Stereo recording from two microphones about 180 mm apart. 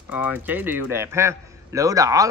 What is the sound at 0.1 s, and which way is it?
Speech, 10° right (ahead or behind).